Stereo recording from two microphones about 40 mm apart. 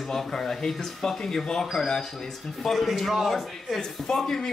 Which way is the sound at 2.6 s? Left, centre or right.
Centre.